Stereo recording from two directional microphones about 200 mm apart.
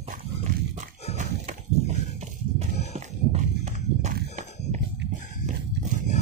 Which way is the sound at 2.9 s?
35° right (ahead or behind).